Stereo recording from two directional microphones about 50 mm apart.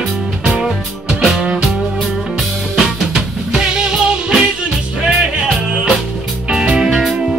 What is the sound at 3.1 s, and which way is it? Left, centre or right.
Music, centre.